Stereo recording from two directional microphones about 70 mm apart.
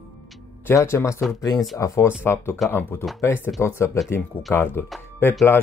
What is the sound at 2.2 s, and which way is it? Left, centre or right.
Speech, left.